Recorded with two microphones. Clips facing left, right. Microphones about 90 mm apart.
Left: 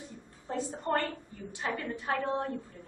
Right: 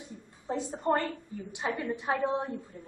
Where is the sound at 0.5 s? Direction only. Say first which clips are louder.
Right 2 dB; 20° right (ahead or behind).